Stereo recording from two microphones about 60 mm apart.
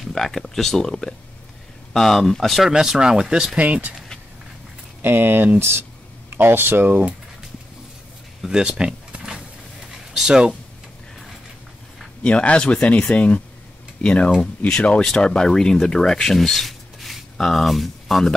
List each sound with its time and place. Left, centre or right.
0.0 s speech: centre
3.6 s speech: right
5.0 s speech: right
5.6 s speech: right
8.4 s speech: centre
10.1 s speech: centre
12.2 s speech: centre